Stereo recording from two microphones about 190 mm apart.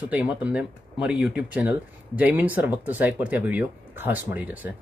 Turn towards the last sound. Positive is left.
turn(degrees=-10)  # may be behind; listen again after turning